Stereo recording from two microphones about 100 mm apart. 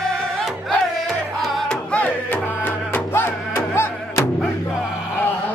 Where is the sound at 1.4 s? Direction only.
Centre (ahead or behind).